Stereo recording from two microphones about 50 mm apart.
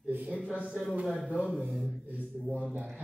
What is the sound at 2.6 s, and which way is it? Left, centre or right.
Speech, right.